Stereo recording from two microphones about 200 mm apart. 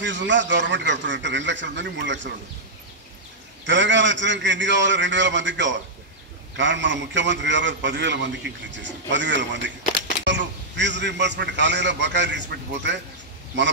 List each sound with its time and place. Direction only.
0.0 s a man's voice: 65° right (ahead or behind)
3.6 s a man's voice: 65° right (ahead or behind)